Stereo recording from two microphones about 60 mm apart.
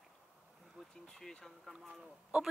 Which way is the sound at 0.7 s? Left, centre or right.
Centre.